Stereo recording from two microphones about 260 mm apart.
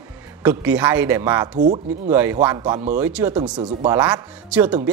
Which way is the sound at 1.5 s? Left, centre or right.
Right.